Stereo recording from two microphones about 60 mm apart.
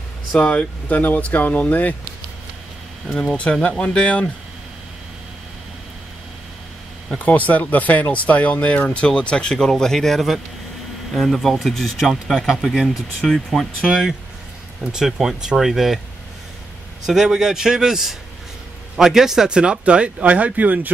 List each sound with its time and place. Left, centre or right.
0.4 s speech: left
3.1 s speech: centre
7.2 s speech: left; by 12.9 s centre
13.2 s speech: centre
13.8 s a man's voice: centre
17.0 s a man's voice: centre; by 20.9 s right